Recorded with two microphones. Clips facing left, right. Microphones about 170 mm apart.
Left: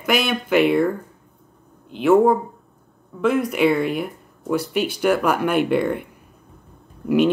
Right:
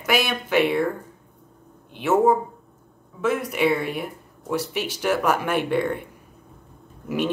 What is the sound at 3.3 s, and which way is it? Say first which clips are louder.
Speech: left 4 dB; 65° left (ahead or behind).